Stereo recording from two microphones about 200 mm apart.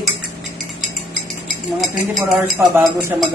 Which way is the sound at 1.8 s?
Centre (ahead or behind).